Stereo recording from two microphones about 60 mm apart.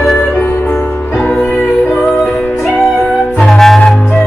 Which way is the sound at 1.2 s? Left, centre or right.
Left.